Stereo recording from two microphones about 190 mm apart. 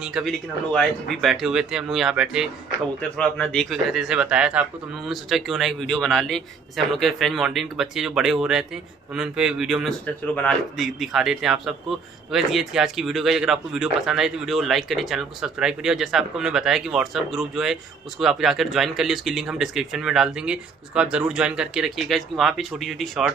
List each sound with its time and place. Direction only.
0.0 s speech: centre (ahead or behind)